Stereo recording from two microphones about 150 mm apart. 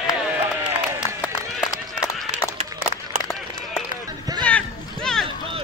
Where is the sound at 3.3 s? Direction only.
Centre (ahead or behind).